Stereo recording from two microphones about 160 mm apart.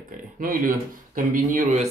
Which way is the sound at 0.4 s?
60° right (ahead or behind).